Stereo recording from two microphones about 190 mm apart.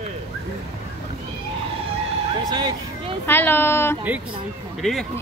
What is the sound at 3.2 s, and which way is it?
Speech, 10° left (ahead or behind).